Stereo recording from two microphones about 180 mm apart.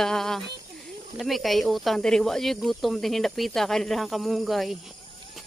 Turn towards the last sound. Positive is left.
turn(degrees=0)  # may be behind; listen again after turning